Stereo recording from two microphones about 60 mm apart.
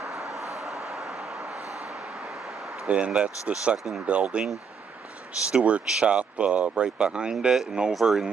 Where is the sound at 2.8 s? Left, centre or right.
Centre.